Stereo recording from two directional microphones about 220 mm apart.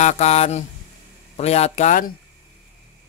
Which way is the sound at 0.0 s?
30° left (ahead or behind).